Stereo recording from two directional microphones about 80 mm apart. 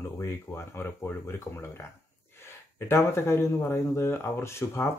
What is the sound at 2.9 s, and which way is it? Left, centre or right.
Speech, left.